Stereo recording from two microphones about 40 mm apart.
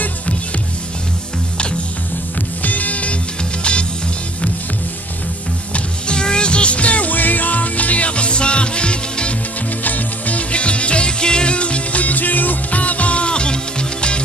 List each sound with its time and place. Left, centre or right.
2.6 s music: left
5.7 s music: left
9.8 s music: left